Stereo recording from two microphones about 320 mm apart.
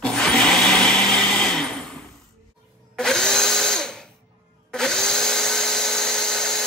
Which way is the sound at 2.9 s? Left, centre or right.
Centre.